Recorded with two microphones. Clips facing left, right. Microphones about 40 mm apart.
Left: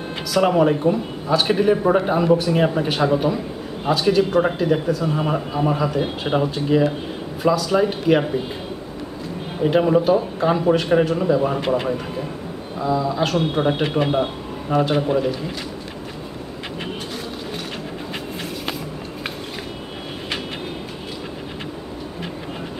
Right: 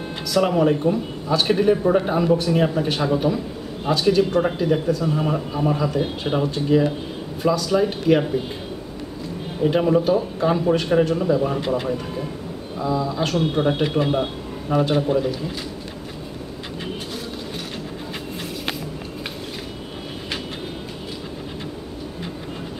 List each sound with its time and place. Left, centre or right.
0.3 s a man's voice: centre
1.8 s speech: centre
2.0 s a man's voice: centre
9.6 s a man's voice: centre
12.7 s a man's voice: centre